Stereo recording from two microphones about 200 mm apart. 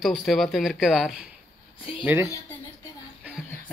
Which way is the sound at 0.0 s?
Centre (ahead or behind).